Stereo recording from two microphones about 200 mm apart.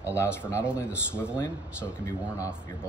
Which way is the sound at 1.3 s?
15° left (ahead or behind).